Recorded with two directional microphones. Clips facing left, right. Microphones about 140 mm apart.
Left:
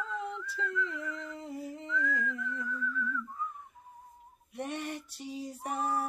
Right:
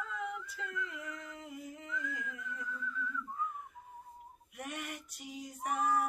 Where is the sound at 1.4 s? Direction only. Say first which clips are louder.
Left 6 dB; 35° left (ahead or behind).